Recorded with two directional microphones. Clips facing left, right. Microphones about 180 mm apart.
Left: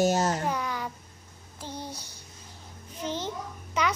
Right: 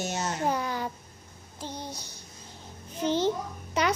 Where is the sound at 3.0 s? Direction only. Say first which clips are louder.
Right 7 dB; 30° right (ahead or behind).